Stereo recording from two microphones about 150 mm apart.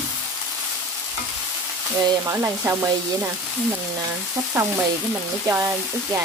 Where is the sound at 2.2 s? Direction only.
15° right (ahead or behind).